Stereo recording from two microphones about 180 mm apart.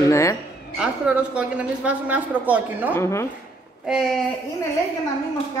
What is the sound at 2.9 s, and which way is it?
Speech, 15° left (ahead or behind).